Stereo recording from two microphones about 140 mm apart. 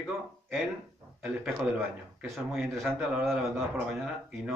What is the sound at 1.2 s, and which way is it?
A man's voice, 5° right (ahead or behind).